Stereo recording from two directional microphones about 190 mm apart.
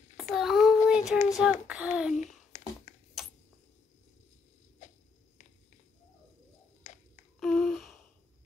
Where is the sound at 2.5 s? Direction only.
40° left (ahead or behind).